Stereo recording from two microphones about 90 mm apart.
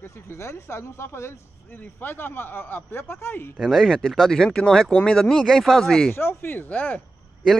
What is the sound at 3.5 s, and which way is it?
Speech, centre (ahead or behind).